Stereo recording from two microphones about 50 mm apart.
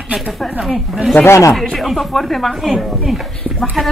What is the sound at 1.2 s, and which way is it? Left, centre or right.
Speech, left.